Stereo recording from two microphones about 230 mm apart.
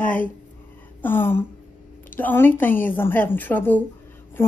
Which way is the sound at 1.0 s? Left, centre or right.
Centre.